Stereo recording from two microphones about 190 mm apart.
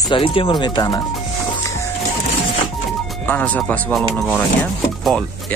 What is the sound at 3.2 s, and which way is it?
Speech, 10° left (ahead or behind).